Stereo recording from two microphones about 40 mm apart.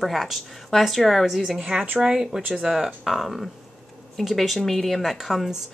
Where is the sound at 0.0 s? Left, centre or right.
Centre.